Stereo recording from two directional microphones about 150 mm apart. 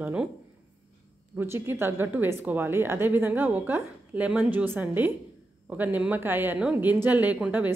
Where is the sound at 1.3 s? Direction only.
15° right (ahead or behind).